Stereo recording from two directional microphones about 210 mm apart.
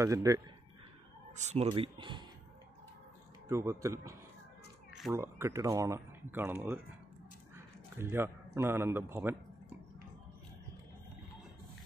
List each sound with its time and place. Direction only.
0.0 s speech: 15° right (ahead or behind)
1.3 s speech: 30° right (ahead or behind)
3.4 s a man's voice: 15° right (ahead or behind)